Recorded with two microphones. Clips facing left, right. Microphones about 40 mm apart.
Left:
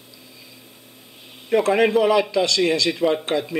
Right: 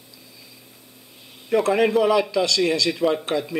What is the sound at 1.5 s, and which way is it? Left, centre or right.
Speech, centre.